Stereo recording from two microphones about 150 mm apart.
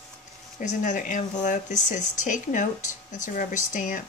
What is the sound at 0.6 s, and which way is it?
Speech, 55° left (ahead or behind).